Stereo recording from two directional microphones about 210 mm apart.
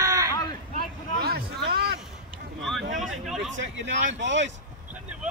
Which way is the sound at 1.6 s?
50° right (ahead or behind).